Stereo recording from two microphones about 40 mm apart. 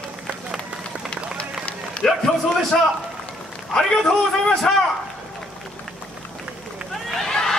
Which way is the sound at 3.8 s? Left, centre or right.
Left.